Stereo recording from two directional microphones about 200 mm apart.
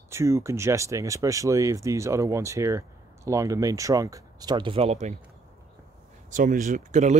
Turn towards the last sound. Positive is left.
turn(degrees=-35)  # may be behind; listen again after turning